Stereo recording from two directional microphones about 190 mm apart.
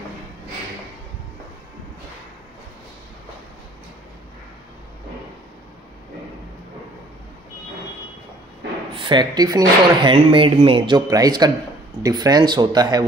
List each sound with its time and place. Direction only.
8.9 s speech: 25° right (ahead or behind)